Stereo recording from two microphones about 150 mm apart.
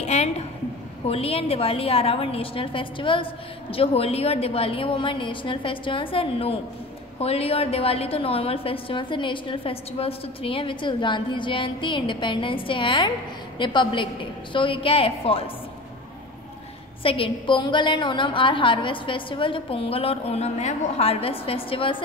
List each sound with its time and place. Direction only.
0.0 s a sound: 45° left (ahead or behind)
1.0 s a woman's voice: 40° left (ahead or behind)
17.0 s a woman's voice: 35° left (ahead or behind)